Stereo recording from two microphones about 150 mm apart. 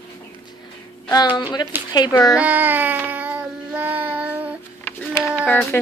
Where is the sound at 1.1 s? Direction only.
25° left (ahead or behind).